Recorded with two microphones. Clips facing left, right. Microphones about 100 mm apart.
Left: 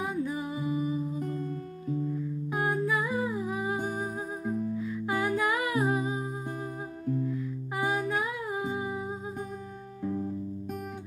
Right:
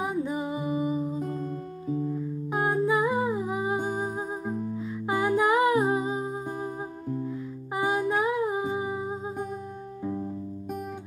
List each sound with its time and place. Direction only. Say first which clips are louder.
0.0 s music: right 3 dB; 20° right (ahead or behind)
7.7 s music: right 4 dB; 20° right (ahead or behind)